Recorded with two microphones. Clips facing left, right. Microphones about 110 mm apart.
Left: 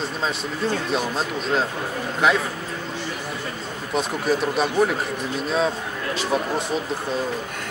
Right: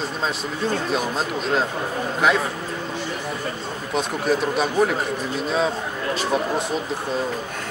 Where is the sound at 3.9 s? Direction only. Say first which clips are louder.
Even; centre (ahead or behind).